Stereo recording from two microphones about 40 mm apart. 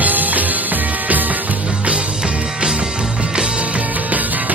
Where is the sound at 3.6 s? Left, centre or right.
Right.